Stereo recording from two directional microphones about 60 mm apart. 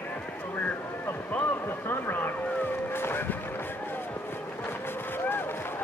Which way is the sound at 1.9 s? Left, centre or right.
Left.